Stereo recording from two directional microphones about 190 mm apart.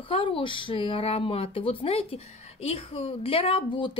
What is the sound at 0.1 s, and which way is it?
A woman's voice, 25° left (ahead or behind).